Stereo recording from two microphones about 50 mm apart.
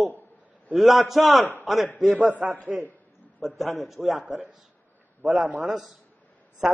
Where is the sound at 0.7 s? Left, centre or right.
Centre.